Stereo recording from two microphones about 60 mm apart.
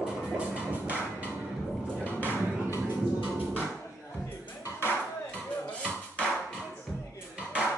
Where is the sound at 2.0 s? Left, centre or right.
Left.